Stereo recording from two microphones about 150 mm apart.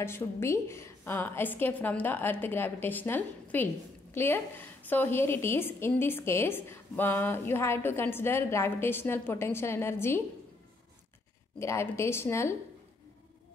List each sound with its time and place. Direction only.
0.0 s a woman's voice: 15° left (ahead or behind)
11.6 s a woman's voice: 20° left (ahead or behind)